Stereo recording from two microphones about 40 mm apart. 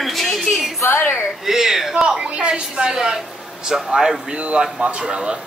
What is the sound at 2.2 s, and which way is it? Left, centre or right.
A woman's voice, right.